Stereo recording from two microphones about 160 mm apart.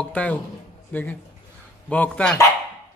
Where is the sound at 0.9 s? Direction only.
10° left (ahead or behind).